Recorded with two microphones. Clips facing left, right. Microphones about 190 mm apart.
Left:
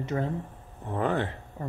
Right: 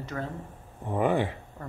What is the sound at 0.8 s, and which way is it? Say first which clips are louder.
Speech: right 2 dB; 10° right (ahead or behind).